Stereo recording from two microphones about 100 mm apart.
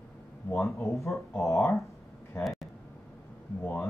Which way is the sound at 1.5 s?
Centre (ahead or behind).